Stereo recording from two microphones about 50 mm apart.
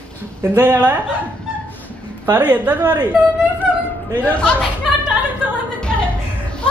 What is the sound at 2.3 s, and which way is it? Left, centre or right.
Speech, right.